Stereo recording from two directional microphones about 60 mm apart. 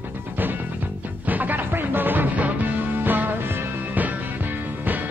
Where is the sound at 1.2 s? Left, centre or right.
Right.